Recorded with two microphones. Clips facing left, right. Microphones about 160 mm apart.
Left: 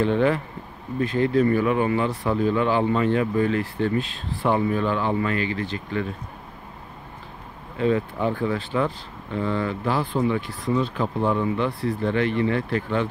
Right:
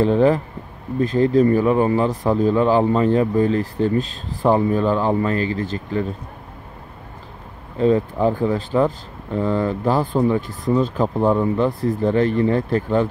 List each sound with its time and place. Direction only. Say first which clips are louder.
0.0 s speech: right 5 dB; 35° right (ahead or behind)
7.7 s speech: right 5 dB; 35° right (ahead or behind)